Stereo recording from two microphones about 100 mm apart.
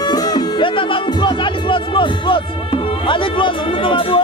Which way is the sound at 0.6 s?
55° left (ahead or behind).